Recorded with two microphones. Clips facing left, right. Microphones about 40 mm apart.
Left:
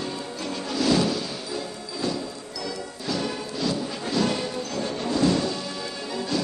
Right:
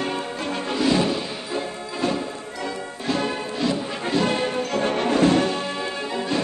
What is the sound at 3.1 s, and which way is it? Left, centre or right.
Music, right.